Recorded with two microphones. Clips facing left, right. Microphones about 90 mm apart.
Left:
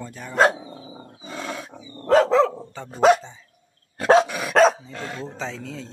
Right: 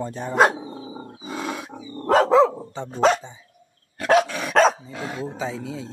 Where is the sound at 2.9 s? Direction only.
5° left (ahead or behind).